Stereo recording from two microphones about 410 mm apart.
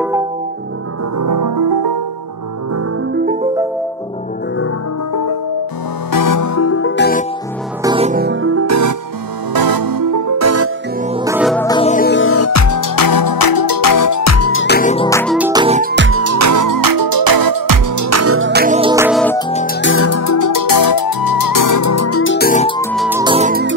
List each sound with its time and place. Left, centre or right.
0.0 s music: centre
1.1 s music: right
5.1 s music: left
7.8 s music: centre; by 8.9 s right
9.5 s music: right
11.1 s music: centre
15.3 s music: centre
19.5 s music: left; by 23.7 s centre